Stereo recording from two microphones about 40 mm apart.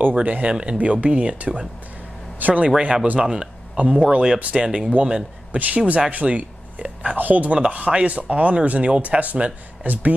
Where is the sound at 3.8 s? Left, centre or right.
Right.